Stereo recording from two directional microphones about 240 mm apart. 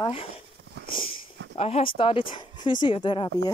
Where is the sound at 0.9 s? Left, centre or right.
Left.